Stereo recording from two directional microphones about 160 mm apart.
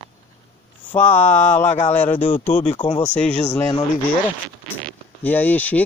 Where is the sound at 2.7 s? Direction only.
30° left (ahead or behind).